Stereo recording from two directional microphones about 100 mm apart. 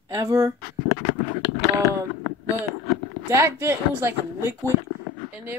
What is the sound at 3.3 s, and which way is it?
Speech, 30° right (ahead or behind).